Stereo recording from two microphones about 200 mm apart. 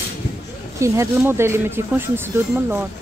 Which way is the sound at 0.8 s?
10° right (ahead or behind).